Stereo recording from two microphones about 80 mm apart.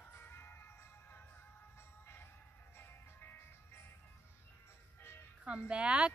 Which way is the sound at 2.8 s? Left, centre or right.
Left.